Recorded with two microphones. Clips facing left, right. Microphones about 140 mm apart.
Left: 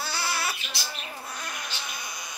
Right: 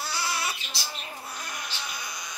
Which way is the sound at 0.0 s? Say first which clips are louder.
Left 1 dB; 30° left (ahead or behind).